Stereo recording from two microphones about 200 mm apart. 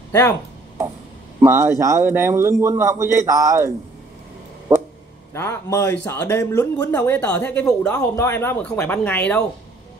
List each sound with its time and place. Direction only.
1.4 s a man's voice: 15° right (ahead or behind)
4.7 s a sound: 15° right (ahead or behind)
5.3 s speech: 15° left (ahead or behind)